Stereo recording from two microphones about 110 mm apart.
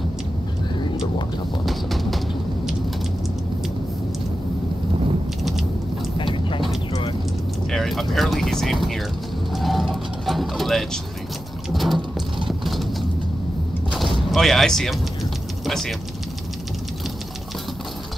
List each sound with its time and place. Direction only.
1.7 s bird: centre (ahead or behind)
6.1 s vehicle: 50° left (ahead or behind)
6.9 s vehicle: 60° left (ahead or behind)
7.7 s speech: centre (ahead or behind)
9.5 s mechanisms: centre (ahead or behind)
11.7 s vehicle: centre (ahead or behind)
12.4 s a sound: centre (ahead or behind)
13.9 s artillery fire: centre (ahead or behind)
15.6 s vehicle: 5° left (ahead or behind)